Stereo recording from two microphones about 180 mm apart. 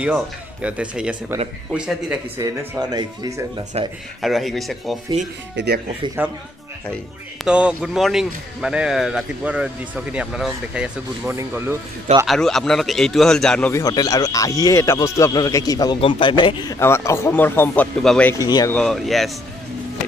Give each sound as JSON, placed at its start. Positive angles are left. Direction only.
{"t": 0.0, "sound": "a man's voice", "side_deg": -5}
{"t": 2.3, "sound": "speech", "side_deg": -15}
{"t": 3.8, "sound": "speech", "side_deg": -35}
{"t": 4.2, "sound": "a man's voice", "side_deg": 0}
{"t": 6.2, "sound": "speech", "side_deg": -10}
{"t": 7.4, "sound": "a man's voice", "side_deg": -5}
{"t": 12.3, "sound": "a man's voice", "side_deg": 0}
{"t": 18.4, "sound": "speech", "side_deg": 20}
{"t": 18.7, "sound": "a man's voice", "side_deg": 5}